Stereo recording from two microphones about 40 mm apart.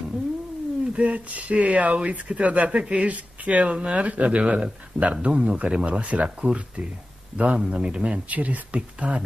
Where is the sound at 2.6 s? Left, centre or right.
Right.